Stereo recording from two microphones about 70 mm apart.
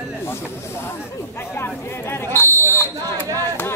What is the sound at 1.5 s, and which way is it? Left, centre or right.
Speech, left.